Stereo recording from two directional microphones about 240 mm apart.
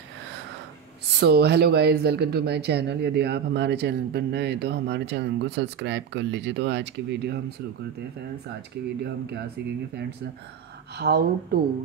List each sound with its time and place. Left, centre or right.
1.2 s speech: right
9.0 s speech: right
11.0 s speech: right